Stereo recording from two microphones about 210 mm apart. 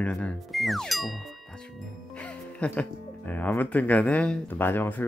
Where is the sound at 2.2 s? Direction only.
5° left (ahead or behind).